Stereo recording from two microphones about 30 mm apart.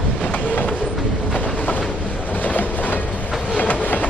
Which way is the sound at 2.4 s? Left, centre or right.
Left.